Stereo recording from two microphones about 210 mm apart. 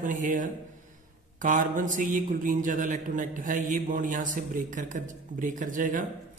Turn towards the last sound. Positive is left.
turn(degrees=-40)  # may be behind; listen again after turning